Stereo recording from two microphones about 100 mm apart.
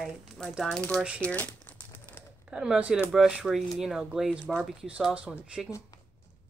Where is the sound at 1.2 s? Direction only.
15° left (ahead or behind).